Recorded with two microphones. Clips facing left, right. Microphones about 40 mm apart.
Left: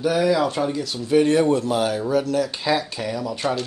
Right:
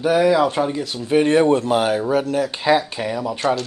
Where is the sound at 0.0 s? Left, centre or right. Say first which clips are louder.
Right 4 dB; right.